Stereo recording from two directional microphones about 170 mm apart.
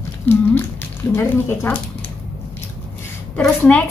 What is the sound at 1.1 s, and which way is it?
Speech, 15° left (ahead or behind).